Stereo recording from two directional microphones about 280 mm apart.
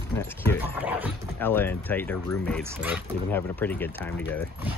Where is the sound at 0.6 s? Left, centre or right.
Centre.